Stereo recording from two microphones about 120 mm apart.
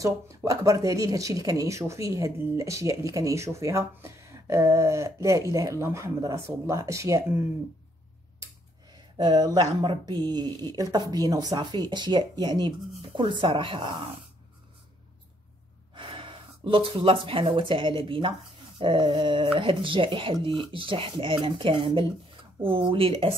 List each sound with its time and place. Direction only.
0.0 s speech: 25° right (ahead or behind)
9.1 s speech: 35° right (ahead or behind)
15.9 s speech: 45° right (ahead or behind)